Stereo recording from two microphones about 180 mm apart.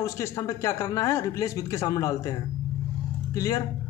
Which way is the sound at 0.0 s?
15° left (ahead or behind).